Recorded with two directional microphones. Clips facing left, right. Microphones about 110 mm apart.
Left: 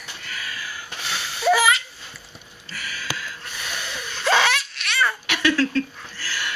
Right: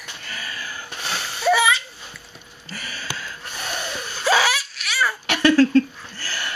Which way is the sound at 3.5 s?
40° right (ahead or behind).